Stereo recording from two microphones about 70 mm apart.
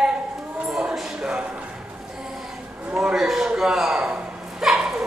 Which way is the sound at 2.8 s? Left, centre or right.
Centre.